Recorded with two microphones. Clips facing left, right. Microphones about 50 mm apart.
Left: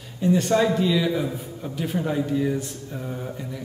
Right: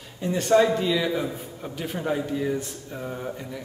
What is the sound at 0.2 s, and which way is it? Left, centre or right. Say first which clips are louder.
A man's voice: even; centre.